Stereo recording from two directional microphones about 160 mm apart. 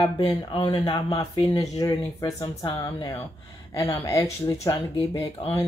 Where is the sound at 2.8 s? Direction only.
15° left (ahead or behind).